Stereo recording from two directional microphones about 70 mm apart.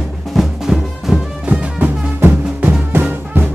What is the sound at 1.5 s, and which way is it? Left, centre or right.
Music, right.